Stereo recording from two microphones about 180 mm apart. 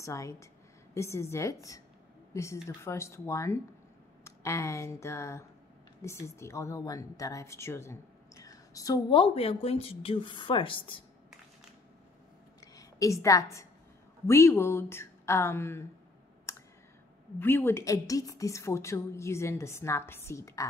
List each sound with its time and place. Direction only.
0.0 s a woman's voice: 15° left (ahead or behind)
9.2 s a woman's voice: 30° left (ahead or behind)
12.5 s a sound: 20° left (ahead or behind)
14.2 s a woman's voice: 15° left (ahead or behind)
16.5 s clicking: 15° left (ahead or behind)
17.4 s a woman's voice: 10° left (ahead or behind)